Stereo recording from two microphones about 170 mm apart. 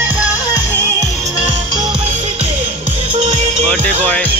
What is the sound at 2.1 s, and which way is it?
Music, 40° right (ahead or behind).